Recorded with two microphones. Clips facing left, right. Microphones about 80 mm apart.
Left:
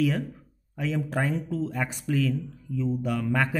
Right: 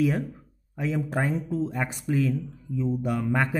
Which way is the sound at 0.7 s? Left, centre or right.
Centre.